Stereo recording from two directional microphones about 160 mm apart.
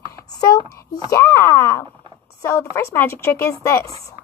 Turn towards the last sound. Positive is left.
turn(degrees=15)  # may be behind; listen again after turning